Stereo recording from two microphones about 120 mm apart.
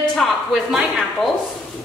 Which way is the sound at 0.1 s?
Centre (ahead or behind).